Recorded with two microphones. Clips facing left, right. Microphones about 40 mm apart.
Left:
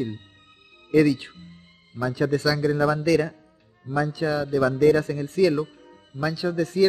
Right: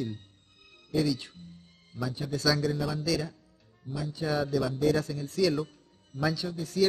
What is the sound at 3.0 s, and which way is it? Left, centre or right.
Speech, left.